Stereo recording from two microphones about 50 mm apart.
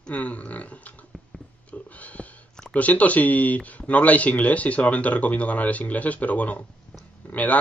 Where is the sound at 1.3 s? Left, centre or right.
Centre.